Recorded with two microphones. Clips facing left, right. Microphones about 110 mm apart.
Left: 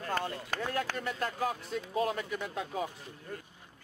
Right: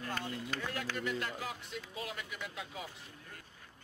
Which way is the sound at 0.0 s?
45° left (ahead or behind).